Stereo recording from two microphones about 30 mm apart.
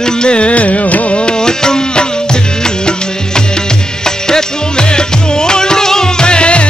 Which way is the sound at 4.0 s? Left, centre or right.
Left.